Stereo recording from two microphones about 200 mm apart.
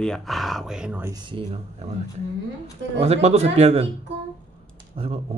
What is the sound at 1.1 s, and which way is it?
Speech, 25° right (ahead or behind).